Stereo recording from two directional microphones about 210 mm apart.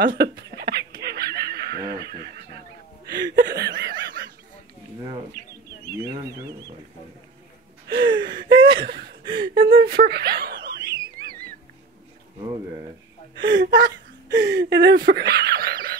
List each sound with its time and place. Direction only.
0.0 s speech: 45° right (ahead or behind)
0.4 s fowl: 50° right (ahead or behind)
2.0 s neigh: 50° right (ahead or behind)
3.1 s chuckle: 55° right (ahead or behind)
7.9 s gasp: 60° right (ahead or behind)
8.4 s a sound: 20° right (ahead or behind)
8.8 s chuckle: 50° right (ahead or behind)
9.2 s a sound: 25° right (ahead or behind)
9.5 s a sound: 45° right (ahead or behind)
11.1 s music: 45° right (ahead or behind)
12.4 s a sound: 20° right (ahead or behind)
13.4 s whimper: 55° right (ahead or behind)